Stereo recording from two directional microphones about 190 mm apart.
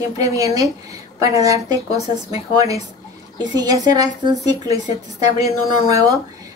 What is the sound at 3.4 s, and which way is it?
A woman's voice, 20° right (ahead or behind).